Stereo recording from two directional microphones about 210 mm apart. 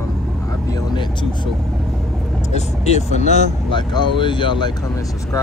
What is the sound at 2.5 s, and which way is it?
Speech, 30° left (ahead or behind).